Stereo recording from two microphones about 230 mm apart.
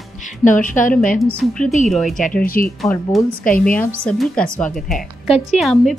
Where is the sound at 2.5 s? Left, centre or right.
Left.